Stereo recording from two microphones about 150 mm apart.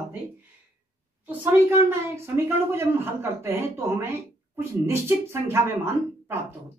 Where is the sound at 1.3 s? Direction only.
15° right (ahead or behind).